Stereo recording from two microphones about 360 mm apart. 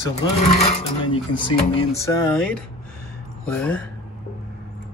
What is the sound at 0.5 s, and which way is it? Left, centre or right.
Speech, centre.